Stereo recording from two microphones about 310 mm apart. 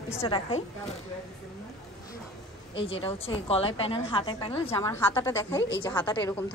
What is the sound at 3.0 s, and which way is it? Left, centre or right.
A woman's voice, centre.